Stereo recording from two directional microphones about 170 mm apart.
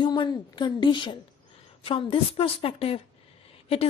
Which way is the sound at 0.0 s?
30° left (ahead or behind).